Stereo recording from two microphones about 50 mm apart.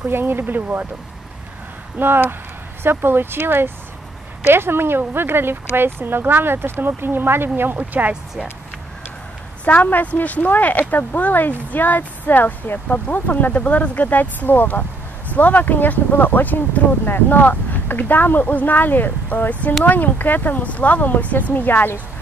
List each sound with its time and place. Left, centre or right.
0.1 s speech: right
2.0 s speech: right
9.7 s speech: left